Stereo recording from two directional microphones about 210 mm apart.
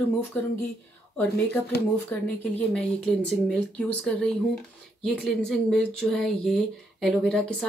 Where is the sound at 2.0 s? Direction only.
5° left (ahead or behind).